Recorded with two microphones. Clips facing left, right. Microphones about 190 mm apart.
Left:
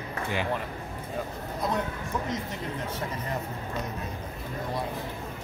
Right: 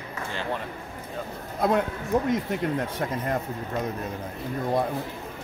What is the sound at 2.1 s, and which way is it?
Speech, 55° right (ahead or behind).